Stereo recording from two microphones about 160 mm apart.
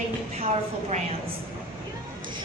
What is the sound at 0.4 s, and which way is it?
Speech, 40° right (ahead or behind).